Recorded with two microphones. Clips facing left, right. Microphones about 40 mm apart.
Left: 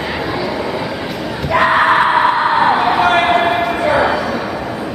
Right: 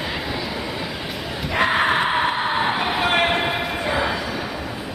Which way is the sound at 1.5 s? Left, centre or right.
Centre.